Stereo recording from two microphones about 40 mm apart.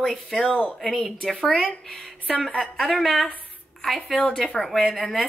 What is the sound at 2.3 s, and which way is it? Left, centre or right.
Speech, centre.